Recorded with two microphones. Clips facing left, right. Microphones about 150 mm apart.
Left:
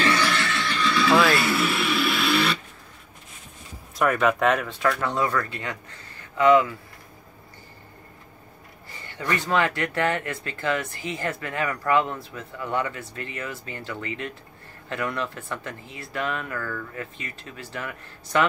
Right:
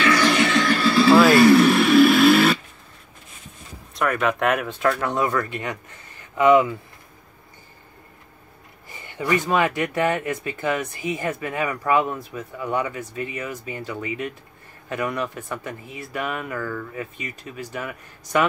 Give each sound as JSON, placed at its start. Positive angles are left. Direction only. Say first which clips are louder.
{"t": 0.2, "sound": "music", "louder": "right 6 dB", "side_deg": -15}
{"t": 0.6, "sound": "music", "louder": "right 6 dB", "side_deg": -45}
{"t": 1.3, "sound": "music", "louder": "right 11 dB", "side_deg": 0}
{"t": 1.8, "sound": "a sound", "louder": "right 11 dB", "side_deg": -45}
{"t": 3.9, "sound": "speech", "louder": "left 1 dB", "side_deg": 0}
{"t": 5.0, "sound": "speech", "louder": "right 2 dB", "side_deg": -15}
{"t": 8.9, "sound": "speech", "louder": "right 5 dB", "side_deg": -15}